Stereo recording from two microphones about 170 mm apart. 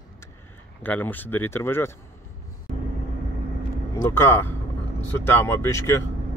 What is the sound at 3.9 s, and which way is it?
Speech, 15° left (ahead or behind).